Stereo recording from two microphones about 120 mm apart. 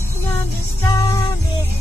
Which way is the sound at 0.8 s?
25° left (ahead or behind).